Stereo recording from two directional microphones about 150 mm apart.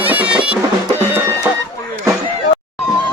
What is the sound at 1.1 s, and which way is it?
Music, 20° right (ahead or behind).